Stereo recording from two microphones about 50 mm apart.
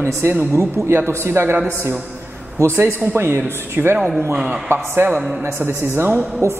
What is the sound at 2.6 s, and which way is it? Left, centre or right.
A woman's voice, right.